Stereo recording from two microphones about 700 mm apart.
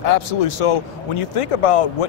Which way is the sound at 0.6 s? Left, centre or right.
Left.